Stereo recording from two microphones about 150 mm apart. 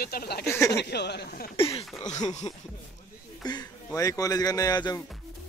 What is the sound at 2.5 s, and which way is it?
Speech, 40° left (ahead or behind).